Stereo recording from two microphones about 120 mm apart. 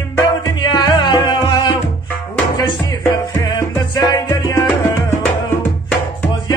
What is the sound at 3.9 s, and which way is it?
Music, 30° left (ahead or behind).